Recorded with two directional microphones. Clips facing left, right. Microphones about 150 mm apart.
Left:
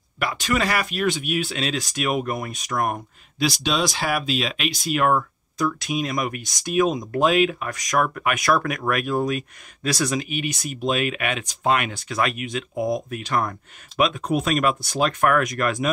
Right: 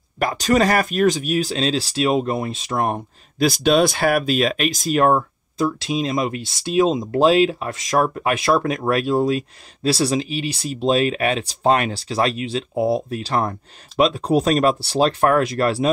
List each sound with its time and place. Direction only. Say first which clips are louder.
0.2 s speech: right 6 dB; 40° right (ahead or behind)
3.3 s speech: right 7 dB; 50° right (ahead or behind); by 15.9 s 30° right (ahead or behind)